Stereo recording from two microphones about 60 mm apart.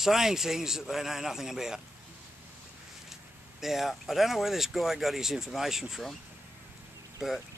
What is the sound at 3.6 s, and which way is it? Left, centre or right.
Speech, centre.